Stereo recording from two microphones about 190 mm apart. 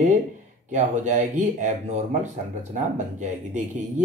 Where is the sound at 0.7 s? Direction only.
40° right (ahead or behind).